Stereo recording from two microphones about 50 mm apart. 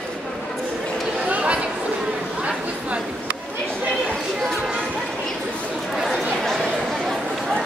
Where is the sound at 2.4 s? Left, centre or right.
Right.